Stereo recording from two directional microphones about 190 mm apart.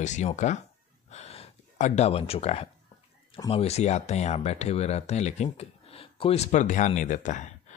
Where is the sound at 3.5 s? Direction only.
35° left (ahead or behind).